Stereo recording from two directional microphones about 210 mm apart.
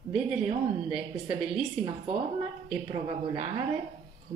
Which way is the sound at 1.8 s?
25° right (ahead or behind).